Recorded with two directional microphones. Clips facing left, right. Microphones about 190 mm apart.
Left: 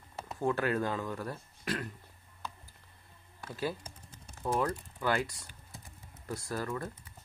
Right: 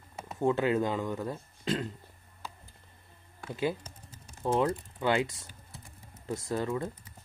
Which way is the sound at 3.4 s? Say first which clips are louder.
Right 4 dB; 20° right (ahead or behind).